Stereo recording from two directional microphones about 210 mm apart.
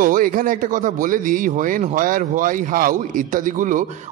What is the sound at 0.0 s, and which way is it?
A man's voice, 40° right (ahead or behind).